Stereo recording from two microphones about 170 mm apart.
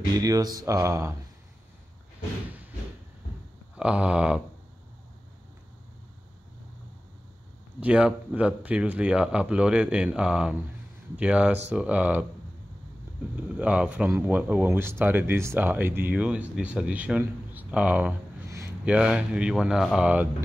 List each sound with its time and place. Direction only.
0.1 s speech: 20° right (ahead or behind)
3.7 s speech: 5° right (ahead or behind)
7.8 s speech: 5° right (ahead or behind)
13.6 s speech: 5° right (ahead or behind)